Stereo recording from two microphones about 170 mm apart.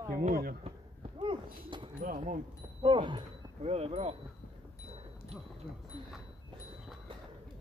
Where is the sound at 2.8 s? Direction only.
30° right (ahead or behind).